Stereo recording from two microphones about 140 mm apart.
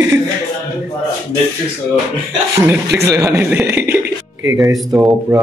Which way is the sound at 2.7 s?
20° right (ahead or behind).